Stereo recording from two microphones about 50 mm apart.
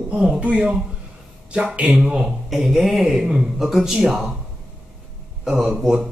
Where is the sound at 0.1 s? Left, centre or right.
Right.